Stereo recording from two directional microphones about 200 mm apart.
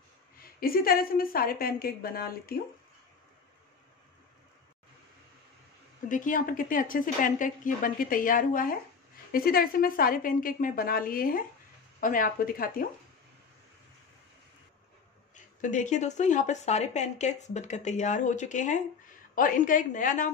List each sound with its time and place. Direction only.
0.4 s a woman's voice: 45° left (ahead or behind)
6.0 s a woman's voice: 40° left (ahead or behind)
15.3 s speech: 40° left (ahead or behind)